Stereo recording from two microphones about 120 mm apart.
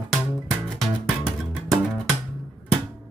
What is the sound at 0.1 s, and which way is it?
Music, 5° left (ahead or behind).